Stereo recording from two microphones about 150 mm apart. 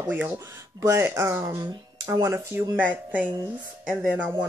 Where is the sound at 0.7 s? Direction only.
20° right (ahead or behind).